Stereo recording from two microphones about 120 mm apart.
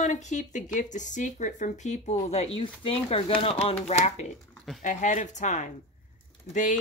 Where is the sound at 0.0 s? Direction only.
80° left.